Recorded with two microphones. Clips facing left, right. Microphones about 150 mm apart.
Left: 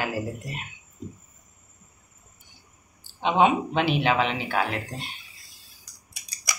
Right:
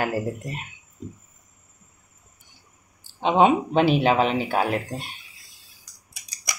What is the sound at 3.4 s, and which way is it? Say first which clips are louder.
Speech: right 3 dB; 40° right (ahead or behind).